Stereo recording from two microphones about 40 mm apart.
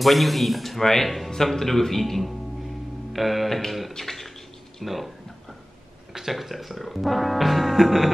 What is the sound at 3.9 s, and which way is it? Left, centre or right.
Bathtub, centre.